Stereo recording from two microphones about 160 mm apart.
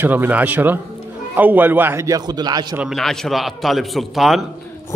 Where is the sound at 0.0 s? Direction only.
10° right (ahead or behind).